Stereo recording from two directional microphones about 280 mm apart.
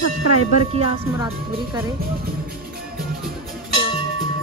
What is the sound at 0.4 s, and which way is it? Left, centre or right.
A woman's voice, right.